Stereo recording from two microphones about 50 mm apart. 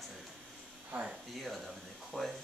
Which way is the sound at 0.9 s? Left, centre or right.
Right.